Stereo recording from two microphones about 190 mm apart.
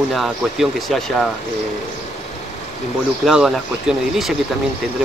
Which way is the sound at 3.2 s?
Centre (ahead or behind).